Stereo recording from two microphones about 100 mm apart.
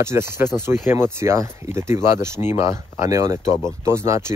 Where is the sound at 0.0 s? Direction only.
25° right (ahead or behind).